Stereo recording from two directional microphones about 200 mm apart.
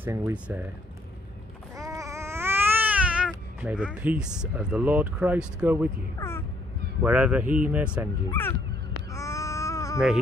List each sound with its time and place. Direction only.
0.0 s speech: 10° right (ahead or behind)
1.8 s babbling: 15° right (ahead or behind)
6.1 s crow: 15° left (ahead or behind)
7.0 s speech: 5° right (ahead or behind)
8.3 s speech: 10° left (ahead or behind)
9.1 s babbling: 15° left (ahead or behind)